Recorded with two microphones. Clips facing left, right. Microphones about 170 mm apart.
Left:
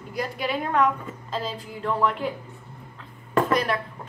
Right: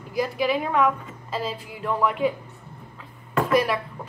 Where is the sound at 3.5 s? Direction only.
5° right (ahead or behind).